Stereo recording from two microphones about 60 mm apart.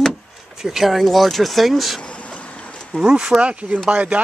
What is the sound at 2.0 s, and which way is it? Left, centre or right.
Vehicle, centre.